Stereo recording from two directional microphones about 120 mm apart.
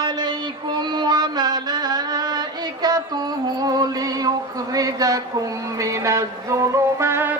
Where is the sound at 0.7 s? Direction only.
35° right (ahead or behind).